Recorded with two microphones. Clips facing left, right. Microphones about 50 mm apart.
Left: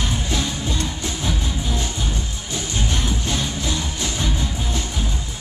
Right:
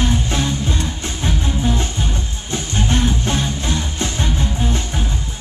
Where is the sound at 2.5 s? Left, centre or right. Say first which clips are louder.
Right 5 dB; right.